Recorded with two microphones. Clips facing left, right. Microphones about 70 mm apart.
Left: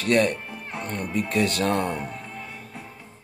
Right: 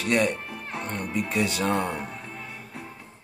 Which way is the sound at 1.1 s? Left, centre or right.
Centre.